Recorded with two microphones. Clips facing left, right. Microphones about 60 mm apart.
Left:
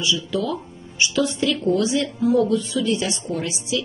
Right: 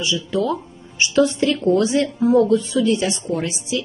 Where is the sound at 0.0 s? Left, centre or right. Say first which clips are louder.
Right 2 dB; right.